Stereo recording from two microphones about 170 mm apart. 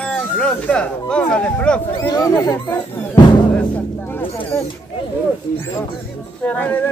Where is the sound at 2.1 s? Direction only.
20° left (ahead or behind).